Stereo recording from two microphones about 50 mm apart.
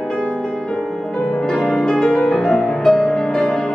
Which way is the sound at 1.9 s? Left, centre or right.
Centre.